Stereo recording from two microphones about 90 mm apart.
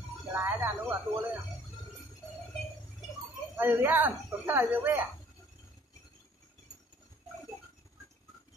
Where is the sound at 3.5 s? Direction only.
20° right (ahead or behind).